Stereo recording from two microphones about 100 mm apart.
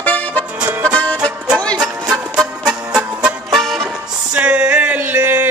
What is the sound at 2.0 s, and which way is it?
Music, 5° right (ahead or behind).